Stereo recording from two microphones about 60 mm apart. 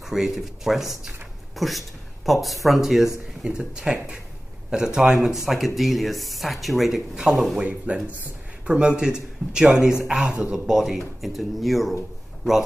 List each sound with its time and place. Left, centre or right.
0.0 s speech: centre
3.4 s speech: centre
7.6 s speech: right; by 11.9 s centre